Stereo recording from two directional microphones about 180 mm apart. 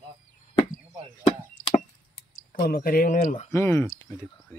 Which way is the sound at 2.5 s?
55° left (ahead or behind).